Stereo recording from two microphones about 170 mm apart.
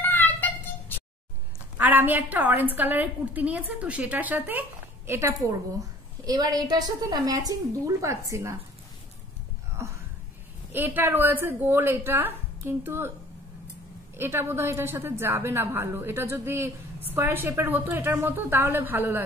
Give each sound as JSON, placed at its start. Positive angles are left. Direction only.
{"t": 0.0, "sound": "a sound", "side_deg": 10}
{"t": 1.8, "sound": "a woman's voice", "side_deg": -10}
{"t": 10.7, "sound": "a woman's voice", "side_deg": -10}
{"t": 14.1, "sound": "a woman's voice", "side_deg": -15}